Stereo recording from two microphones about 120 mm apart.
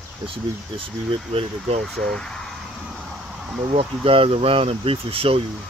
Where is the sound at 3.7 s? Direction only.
50° right (ahead or behind).